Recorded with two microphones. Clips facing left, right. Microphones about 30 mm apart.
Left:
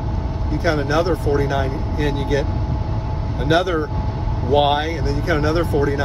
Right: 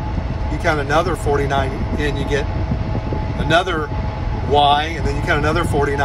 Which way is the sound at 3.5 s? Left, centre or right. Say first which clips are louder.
Right 1 dB; right.